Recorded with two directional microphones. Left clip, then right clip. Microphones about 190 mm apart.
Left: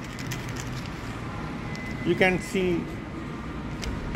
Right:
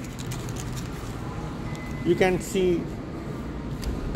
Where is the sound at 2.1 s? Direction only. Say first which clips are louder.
Right 1 dB; centre (ahead or behind).